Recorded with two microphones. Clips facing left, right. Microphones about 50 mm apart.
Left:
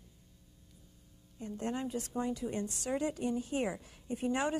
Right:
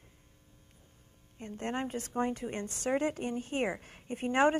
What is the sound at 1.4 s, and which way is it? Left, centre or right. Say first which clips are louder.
Speech: right 1 dB; right.